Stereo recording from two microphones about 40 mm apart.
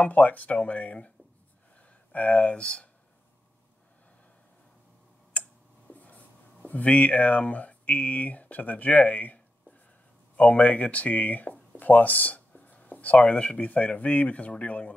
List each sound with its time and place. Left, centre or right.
0.0 s speech: left
1.8 s a sound: left
2.5 s speech: left
5.4 s clicking: left
5.9 s writing: left
6.6 s speech: left